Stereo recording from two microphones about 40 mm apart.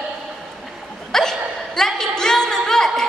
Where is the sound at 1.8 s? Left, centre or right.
Centre.